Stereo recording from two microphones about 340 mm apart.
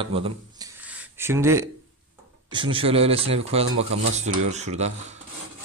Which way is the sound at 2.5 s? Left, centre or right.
Centre.